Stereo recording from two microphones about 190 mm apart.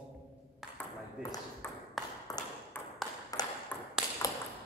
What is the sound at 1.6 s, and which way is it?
Ping, 10° left (ahead or behind).